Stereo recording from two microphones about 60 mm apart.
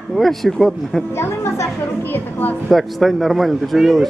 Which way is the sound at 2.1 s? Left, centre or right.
Left.